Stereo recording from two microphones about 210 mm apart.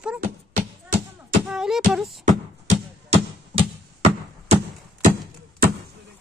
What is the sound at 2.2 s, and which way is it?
Beatboxing, 30° right (ahead or behind).